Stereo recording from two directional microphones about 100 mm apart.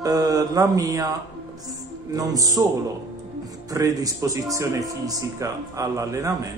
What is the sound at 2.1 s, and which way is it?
Speech, 40° right (ahead or behind).